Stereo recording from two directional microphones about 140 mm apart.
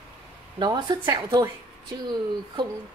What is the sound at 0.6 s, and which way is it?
A woman's voice, 35° right (ahead or behind).